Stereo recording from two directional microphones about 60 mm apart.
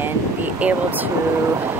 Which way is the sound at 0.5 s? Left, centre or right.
Right.